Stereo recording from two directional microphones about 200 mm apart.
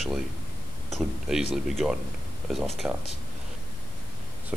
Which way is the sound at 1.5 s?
5° right (ahead or behind).